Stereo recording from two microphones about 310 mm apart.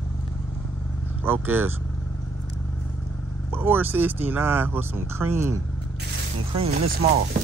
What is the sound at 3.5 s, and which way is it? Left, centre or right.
Speech, centre.